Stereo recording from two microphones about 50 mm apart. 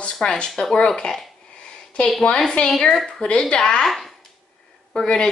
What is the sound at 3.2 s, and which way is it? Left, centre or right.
Speech, left.